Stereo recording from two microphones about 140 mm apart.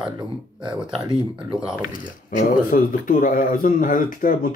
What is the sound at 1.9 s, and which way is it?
Speech, 70° left (ahead or behind).